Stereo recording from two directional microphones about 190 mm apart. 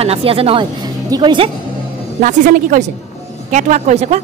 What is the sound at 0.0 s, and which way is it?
Speech, 30° right (ahead or behind).